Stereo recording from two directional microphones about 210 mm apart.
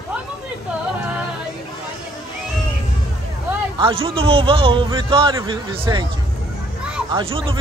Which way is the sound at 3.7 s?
25° right (ahead or behind).